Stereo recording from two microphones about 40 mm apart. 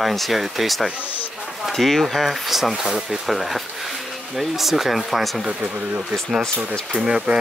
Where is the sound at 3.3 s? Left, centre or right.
Centre.